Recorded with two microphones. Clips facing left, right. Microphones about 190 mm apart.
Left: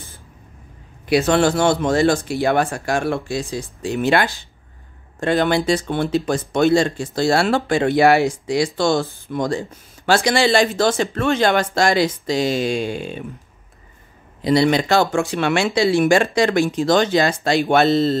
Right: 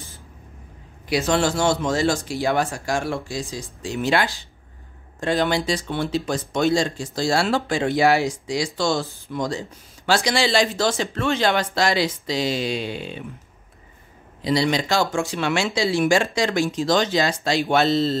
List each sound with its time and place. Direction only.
1.0 s speech: 60° left (ahead or behind)
14.4 s speech: 55° left (ahead or behind)